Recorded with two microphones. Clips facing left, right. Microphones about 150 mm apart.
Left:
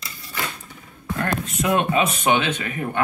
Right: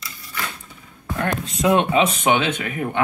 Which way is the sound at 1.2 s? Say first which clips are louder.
Right 3 dB; 20° right (ahead or behind).